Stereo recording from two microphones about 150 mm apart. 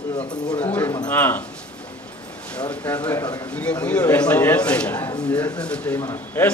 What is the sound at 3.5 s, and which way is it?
A man's voice, 10° left (ahead or behind).